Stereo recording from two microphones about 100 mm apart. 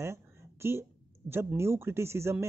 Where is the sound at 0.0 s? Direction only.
25° right (ahead or behind).